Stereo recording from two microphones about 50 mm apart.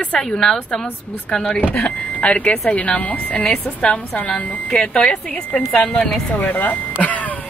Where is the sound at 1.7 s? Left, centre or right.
Left.